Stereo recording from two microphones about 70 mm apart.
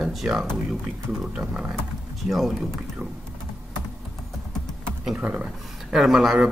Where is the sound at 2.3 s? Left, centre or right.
Centre.